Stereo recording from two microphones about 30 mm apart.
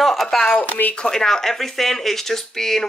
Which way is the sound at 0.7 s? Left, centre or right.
Left.